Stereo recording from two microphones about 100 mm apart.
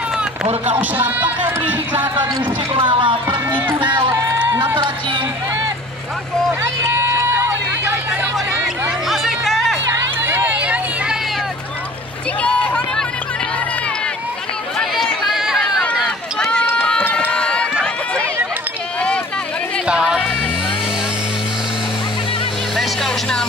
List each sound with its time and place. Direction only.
0.7 s speech: 15° right (ahead or behind)
2.7 s speech: 55° right (ahead or behind)
4.7 s music: 50° right (ahead or behind)
6.6 s a sound: 30° right (ahead or behind)
9.0 s music: centre (ahead or behind)
10.2 s run: 20° right (ahead or behind)
12.4 s a sound: 15° left (ahead or behind)
14.8 s chatter: 10° left (ahead or behind)
15.2 s run: 5° right (ahead or behind)
15.6 s run: 10° left (ahead or behind)
16.6 s run: 20° left (ahead or behind)
18.9 s a sound: 10° left (ahead or behind)
19.9 s music: 5° right (ahead or behind)
22.8 s music: 5° left (ahead or behind)